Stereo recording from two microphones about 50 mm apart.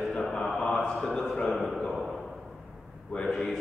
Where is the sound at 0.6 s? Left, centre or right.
Centre.